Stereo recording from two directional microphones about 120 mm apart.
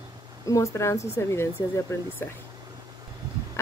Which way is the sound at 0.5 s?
25° left (ahead or behind).